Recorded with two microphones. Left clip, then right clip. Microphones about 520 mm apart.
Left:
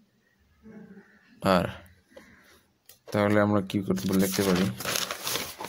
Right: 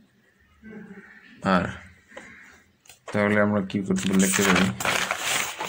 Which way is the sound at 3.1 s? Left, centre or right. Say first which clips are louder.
Right 1 dB; left.